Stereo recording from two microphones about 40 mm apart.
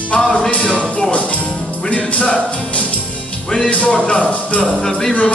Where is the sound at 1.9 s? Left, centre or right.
Left.